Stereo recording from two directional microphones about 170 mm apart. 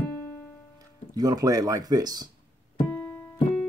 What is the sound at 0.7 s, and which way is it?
Speech, 20° right (ahead or behind).